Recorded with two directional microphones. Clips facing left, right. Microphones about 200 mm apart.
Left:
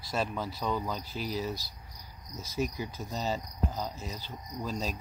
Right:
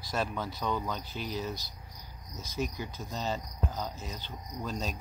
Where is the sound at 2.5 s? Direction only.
5° left (ahead or behind).